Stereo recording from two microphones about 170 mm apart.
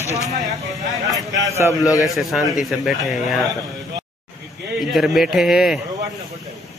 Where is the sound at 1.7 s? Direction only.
20° left (ahead or behind).